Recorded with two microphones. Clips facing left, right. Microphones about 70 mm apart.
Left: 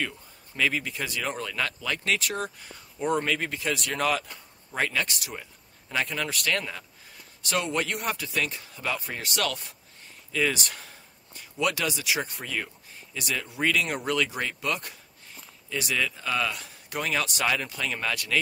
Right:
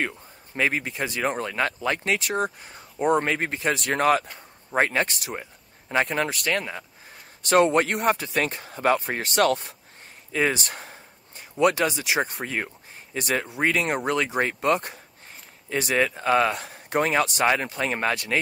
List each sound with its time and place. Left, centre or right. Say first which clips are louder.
0.6 s speech: right 3 dB; right
7.4 s speech: right 9 dB; right
13.6 s speech: right 1 dB; right